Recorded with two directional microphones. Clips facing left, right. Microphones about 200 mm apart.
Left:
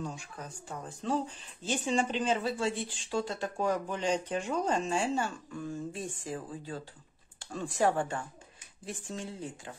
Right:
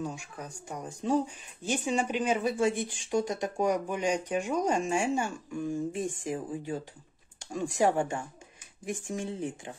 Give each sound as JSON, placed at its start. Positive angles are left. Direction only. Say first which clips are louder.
{"t": 0.0, "sound": "speech", "louder": "right 3 dB", "side_deg": -10}